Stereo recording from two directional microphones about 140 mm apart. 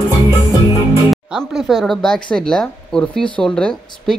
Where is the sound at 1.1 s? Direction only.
Centre (ahead or behind).